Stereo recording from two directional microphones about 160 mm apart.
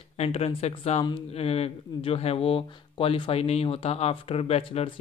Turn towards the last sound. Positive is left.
turn(degrees=40)  # may be behind; listen again after turning